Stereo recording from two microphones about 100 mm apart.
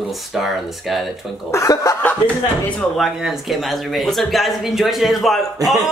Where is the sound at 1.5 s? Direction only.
30° left (ahead or behind).